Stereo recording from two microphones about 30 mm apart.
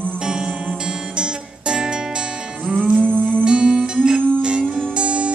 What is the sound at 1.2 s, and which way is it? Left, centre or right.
Music, right.